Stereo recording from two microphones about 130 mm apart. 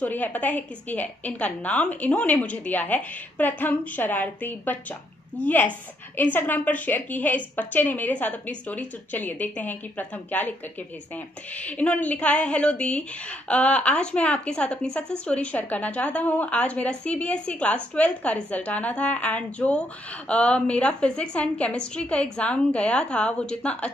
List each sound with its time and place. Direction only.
0.0 s a woman's voice: 15° left (ahead or behind)
11.5 s a woman's voice: 10° left (ahead or behind)